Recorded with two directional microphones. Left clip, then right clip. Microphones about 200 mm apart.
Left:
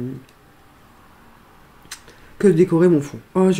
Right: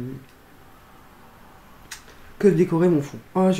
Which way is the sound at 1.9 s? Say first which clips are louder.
Left 2 dB; 30° left (ahead or behind).